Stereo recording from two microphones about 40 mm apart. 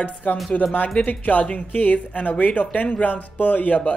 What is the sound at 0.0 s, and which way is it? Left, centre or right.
Speech, left.